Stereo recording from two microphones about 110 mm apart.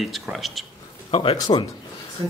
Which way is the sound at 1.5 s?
50° left (ahead or behind).